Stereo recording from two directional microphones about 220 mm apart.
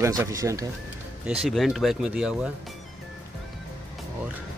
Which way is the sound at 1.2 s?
5° right (ahead or behind).